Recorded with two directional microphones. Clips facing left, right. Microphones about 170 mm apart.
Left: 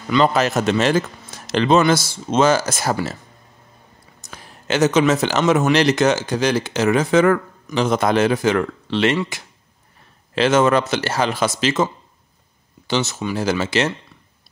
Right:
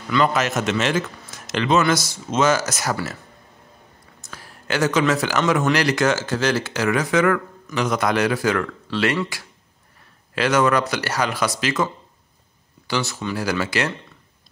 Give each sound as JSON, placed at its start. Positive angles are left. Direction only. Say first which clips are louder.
{"t": 0.1, "sound": "speech", "louder": "left 3 dB", "side_deg": 30}
{"t": 4.2, "sound": "speech", "louder": "left 1 dB", "side_deg": 20}